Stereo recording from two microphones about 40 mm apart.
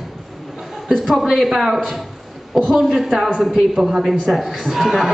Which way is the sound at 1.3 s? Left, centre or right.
Centre.